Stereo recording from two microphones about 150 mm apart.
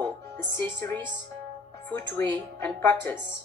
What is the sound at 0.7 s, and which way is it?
A woman's voice, 20° left (ahead or behind).